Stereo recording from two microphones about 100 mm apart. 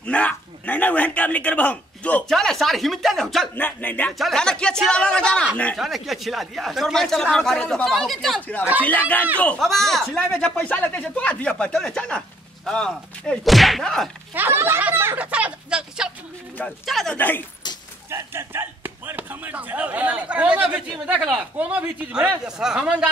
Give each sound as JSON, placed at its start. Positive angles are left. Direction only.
{"t": 0.0, "sound": "speech", "side_deg": 15}
{"t": 2.2, "sound": "speech", "side_deg": 5}
{"t": 3.5, "sound": "speech", "side_deg": 20}
{"t": 4.2, "sound": "speech", "side_deg": 5}
{"t": 5.8, "sound": "speech", "side_deg": 0}
{"t": 8.4, "sound": "speech", "side_deg": 15}
{"t": 9.6, "sound": "speech", "side_deg": 5}
{"t": 14.3, "sound": "speech", "side_deg": -20}
{"t": 16.8, "sound": "speech", "side_deg": 5}
{"t": 18.1, "sound": "speech", "side_deg": -25}